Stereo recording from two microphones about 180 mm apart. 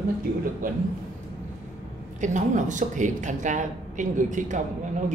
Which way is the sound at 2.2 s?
45° right (ahead or behind).